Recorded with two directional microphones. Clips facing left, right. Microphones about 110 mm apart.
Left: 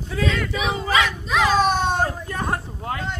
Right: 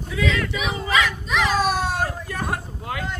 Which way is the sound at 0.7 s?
30° left (ahead or behind).